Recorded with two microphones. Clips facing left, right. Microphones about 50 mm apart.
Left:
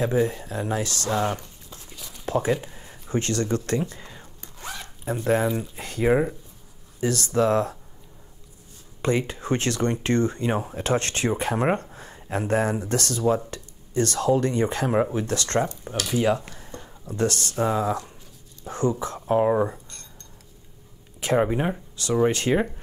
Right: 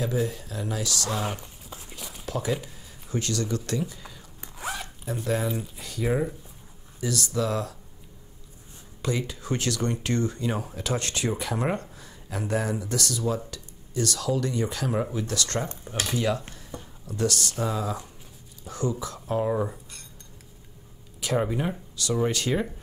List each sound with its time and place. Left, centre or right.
0.3 s speech: left
1.1 s speech: centre
1.4 s a sound: centre
2.2 s speech: left
4.4 s zipper: centre
5.2 s speech: left
9.0 s speech: left
21.2 s speech: left